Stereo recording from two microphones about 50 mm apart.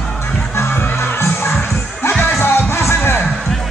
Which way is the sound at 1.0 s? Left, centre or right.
Left.